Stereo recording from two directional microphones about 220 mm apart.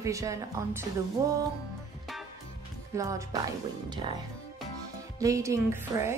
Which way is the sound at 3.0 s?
15° right (ahead or behind).